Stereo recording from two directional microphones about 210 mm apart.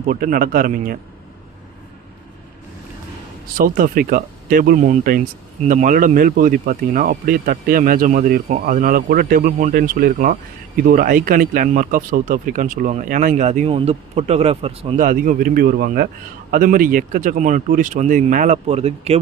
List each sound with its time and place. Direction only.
0.1 s a man's voice: 45° right (ahead or behind)
3.5 s speech: 40° right (ahead or behind)